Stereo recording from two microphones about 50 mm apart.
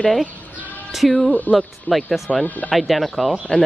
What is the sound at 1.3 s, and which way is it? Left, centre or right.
Speech, left.